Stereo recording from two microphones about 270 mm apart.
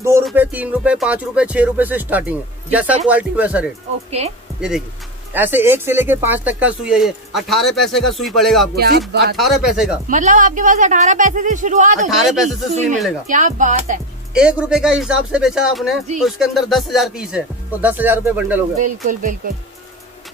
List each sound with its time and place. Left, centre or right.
0.2 s speech: centre
4.2 s speech: right
4.6 s speech: centre
8.7 s speech: right
9.4 s speech: centre
10.0 s speech: right
12.2 s speech: centre
13.3 s speech: right
14.3 s speech: centre
18.8 s speech: right